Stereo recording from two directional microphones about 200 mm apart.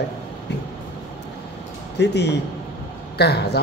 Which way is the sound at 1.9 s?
55° left (ahead or behind).